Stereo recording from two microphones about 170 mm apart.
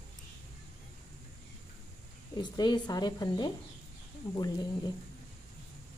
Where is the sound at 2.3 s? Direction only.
25° left (ahead or behind).